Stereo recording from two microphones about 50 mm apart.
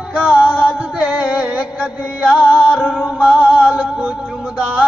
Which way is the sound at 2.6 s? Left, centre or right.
Left.